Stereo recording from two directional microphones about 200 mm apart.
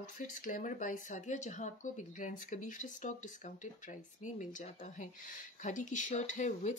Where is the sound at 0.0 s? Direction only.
40° left (ahead or behind).